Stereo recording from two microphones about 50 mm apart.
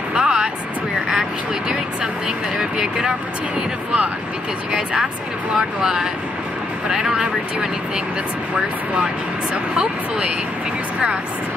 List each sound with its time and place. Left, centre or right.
0.1 s vehicle: centre
2.8 s speech: centre
8.9 s speech: right